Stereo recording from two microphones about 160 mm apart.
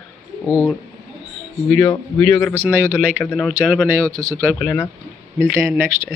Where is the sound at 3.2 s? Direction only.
10° left (ahead or behind).